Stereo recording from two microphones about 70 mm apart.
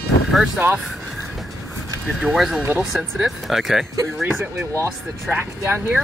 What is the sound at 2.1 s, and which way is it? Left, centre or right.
Speech, centre.